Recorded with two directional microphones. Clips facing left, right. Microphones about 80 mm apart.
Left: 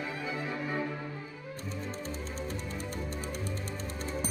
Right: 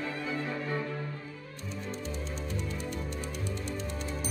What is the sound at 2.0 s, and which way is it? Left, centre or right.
Music, left.